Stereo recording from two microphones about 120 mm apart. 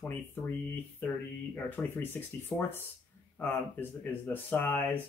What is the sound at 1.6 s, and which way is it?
Speech, 15° left (ahead or behind).